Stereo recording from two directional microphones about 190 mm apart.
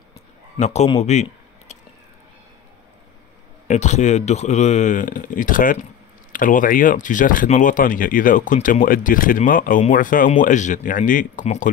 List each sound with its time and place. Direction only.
0.6 s speech: 35° left (ahead or behind)
3.6 s speech: 35° left (ahead or behind)